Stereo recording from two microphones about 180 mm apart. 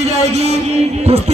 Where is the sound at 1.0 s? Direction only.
35° right (ahead or behind).